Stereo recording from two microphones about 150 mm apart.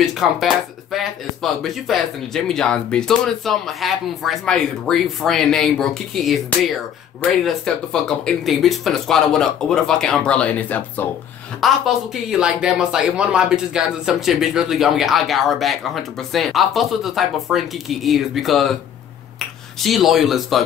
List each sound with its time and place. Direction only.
0.0 s speech: centre (ahead or behind)
11.6 s speech: centre (ahead or behind)